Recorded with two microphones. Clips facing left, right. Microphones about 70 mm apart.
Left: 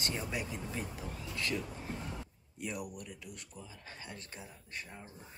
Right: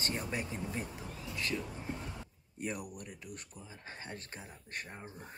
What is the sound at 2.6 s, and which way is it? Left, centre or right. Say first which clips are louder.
Speech: right 1 dB; right.